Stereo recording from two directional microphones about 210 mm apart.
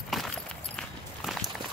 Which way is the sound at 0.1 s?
Centre (ahead or behind).